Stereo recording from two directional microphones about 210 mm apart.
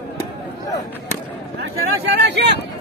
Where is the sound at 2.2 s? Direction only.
55° right (ahead or behind).